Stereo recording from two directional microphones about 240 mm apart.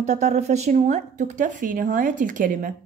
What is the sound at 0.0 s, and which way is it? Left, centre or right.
A woman's voice, right.